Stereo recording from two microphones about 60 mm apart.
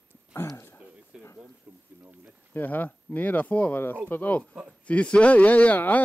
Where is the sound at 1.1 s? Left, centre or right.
Centre.